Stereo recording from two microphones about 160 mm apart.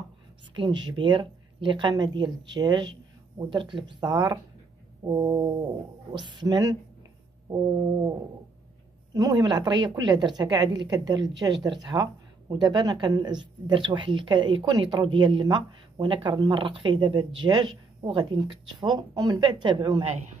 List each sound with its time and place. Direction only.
0.6 s a woman's voice: 30° right (ahead or behind)
9.1 s a woman's voice: 25° right (ahead or behind)